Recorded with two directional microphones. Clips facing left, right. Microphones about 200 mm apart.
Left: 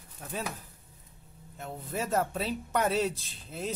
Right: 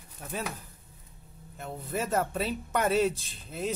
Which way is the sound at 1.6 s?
Centre (ahead or behind).